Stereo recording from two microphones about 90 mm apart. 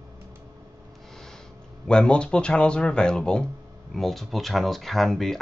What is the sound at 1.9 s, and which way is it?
Speech, 10° left (ahead or behind).